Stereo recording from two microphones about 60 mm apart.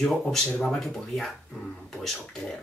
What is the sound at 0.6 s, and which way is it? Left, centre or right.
Speech, centre.